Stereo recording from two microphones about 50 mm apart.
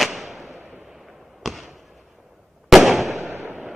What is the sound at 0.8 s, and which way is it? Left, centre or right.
Fireworks, centre.